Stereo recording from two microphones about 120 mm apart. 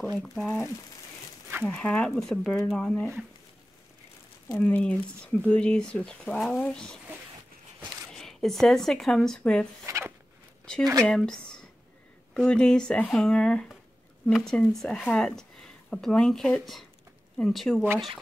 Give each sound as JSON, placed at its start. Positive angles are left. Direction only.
{"t": 0.2, "sound": "speech", "side_deg": 0}
{"t": 1.6, "sound": "speech", "side_deg": 10}
{"t": 4.6, "sound": "speech", "side_deg": 15}
{"t": 8.1, "sound": "speech", "side_deg": 5}
{"t": 9.8, "sound": "zipper", "side_deg": -25}
{"t": 10.8, "sound": "speech", "side_deg": -30}
{"t": 11.1, "sound": "speech", "side_deg": 5}